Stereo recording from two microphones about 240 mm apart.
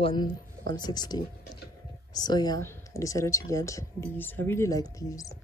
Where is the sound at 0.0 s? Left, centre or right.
Centre.